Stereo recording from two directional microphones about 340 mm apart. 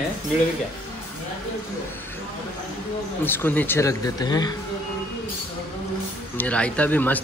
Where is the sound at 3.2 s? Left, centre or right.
Centre.